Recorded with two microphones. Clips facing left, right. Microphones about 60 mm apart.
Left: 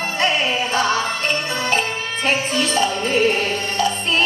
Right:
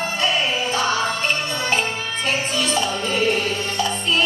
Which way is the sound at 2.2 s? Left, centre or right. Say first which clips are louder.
Left 3 dB; left.